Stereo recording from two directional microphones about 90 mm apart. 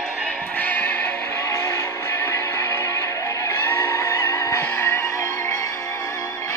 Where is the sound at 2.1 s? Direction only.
35° left (ahead or behind).